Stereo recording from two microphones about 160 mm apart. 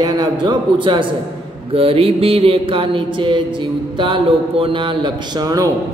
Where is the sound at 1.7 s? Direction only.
35° right (ahead or behind).